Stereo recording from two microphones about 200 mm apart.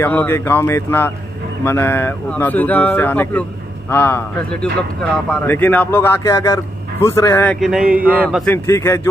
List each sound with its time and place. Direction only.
0.0 s speech: 10° left (ahead or behind)
7.6 s a man's voice: 5° right (ahead or behind)
8.5 s speech: 15° left (ahead or behind)